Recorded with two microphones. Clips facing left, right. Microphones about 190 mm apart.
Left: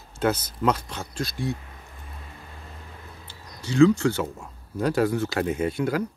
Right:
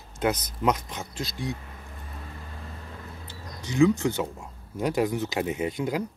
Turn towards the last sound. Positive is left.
turn(degrees=-15)  # may be behind; listen again after turning